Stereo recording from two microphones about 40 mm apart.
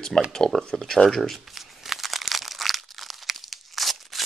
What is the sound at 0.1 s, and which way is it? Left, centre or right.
Speech, centre.